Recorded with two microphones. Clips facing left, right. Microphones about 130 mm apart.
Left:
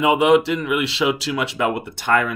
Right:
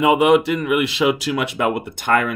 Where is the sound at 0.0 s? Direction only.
50° right (ahead or behind).